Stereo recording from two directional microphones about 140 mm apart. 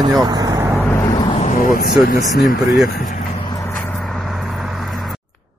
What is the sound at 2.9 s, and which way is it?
Vehicle, 70° left (ahead or behind).